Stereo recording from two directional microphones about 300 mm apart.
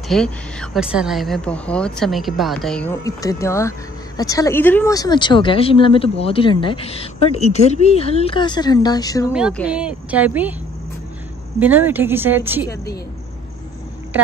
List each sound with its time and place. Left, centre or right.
0.1 s a woman's voice: centre
9.3 s a woman's voice: centre
11.6 s a woman's voice: centre